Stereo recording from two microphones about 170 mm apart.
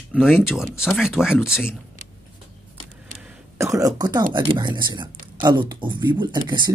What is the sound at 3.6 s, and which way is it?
Speech, 20° right (ahead or behind).